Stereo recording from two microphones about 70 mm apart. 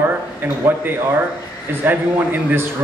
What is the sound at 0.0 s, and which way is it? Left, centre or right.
A man's voice, right.